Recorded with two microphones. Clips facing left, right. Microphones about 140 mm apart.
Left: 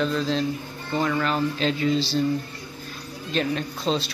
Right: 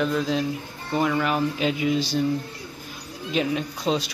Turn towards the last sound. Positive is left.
turn(degrees=-15)  # may be behind; listen again after turning